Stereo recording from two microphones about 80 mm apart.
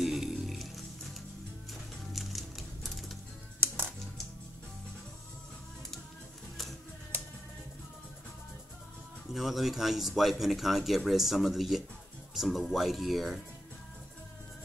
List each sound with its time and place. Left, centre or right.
0.0 s music: centre
3.5 s music: right
9.3 s speech: centre